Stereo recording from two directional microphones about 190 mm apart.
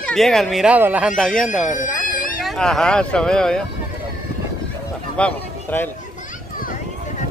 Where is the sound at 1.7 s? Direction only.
45° left (ahead or behind).